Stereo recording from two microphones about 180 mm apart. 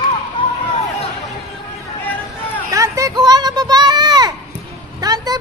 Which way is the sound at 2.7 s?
20° right (ahead or behind).